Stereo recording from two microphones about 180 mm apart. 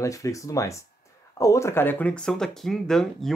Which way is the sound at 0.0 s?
15° left (ahead or behind).